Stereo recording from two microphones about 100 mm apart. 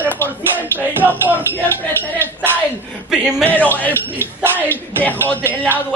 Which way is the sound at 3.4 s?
15° left (ahead or behind).